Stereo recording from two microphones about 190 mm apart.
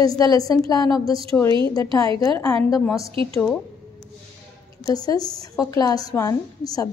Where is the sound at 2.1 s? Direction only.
15° left (ahead or behind).